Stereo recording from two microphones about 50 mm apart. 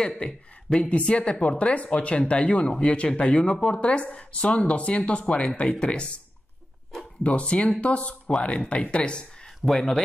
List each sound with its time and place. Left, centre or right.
0.2 s a woman's voice: left
7.2 s a woman's voice: left
9.7 s speech: centre